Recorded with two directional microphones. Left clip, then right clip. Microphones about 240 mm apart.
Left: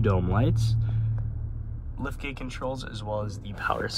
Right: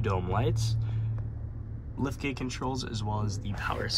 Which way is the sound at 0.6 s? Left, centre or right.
Centre.